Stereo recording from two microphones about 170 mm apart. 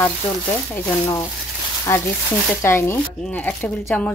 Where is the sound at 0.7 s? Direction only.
10° left (ahead or behind).